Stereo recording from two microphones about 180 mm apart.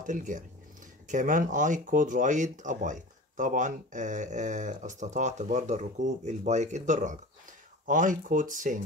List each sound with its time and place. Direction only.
0.0 s speech: 45° right (ahead or behind)